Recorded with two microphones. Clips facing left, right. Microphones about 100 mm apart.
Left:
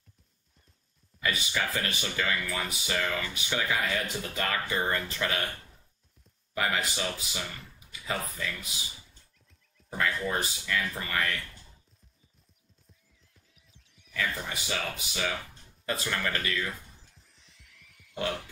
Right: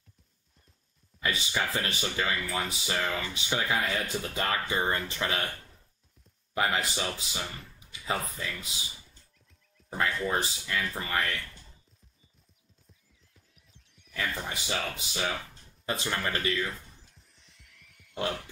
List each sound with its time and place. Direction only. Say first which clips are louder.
1.2 s speech: even; 25° right (ahead or behind)
6.5 s speech: right 1 dB; 25° right (ahead or behind)
9.9 s speech: right 1 dB; 25° right (ahead or behind)
13.3 s music: right 1 dB; centre (ahead or behind)
14.1 s speech: left 1 dB; 25° right (ahead or behind)
17.1 s music: even; centre (ahead or behind)